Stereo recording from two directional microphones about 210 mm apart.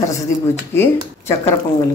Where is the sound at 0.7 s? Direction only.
10° left (ahead or behind).